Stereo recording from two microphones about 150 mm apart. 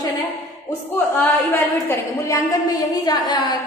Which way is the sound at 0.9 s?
15° left (ahead or behind).